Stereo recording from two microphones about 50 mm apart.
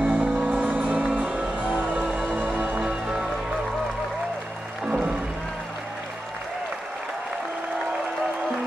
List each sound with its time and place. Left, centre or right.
0.0 s music: right
4.8 s music: right